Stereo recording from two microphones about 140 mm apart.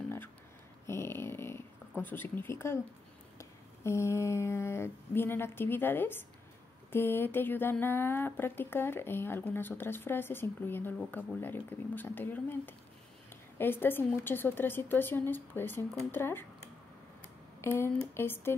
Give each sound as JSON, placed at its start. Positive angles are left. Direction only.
{"t": 0.8, "sound": "dog", "side_deg": 15}
{"t": 2.0, "sound": "speech", "side_deg": 15}
{"t": 17.6, "sound": "speech", "side_deg": 15}